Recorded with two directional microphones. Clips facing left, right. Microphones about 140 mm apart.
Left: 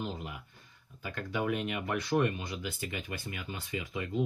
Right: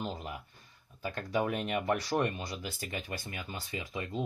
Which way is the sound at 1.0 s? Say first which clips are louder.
Right 2 dB; 35° right (ahead or behind).